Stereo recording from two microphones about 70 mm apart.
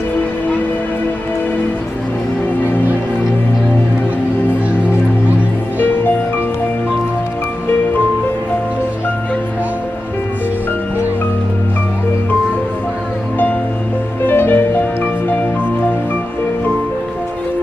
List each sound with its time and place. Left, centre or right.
14.2 s music: left